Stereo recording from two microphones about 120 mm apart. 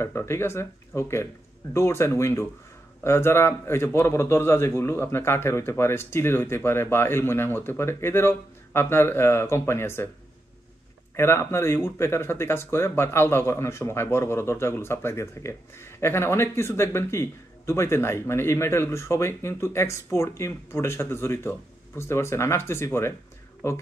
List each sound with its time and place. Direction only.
0.0 s speech: 20° left (ahead or behind)
11.1 s speech: 20° left (ahead or behind)